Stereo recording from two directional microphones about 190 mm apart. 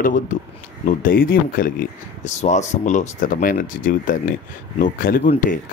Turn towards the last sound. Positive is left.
turn(degrees=45)  # may be behind; listen again after turning